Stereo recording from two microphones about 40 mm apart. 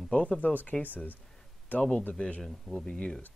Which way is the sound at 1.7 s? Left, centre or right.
Left.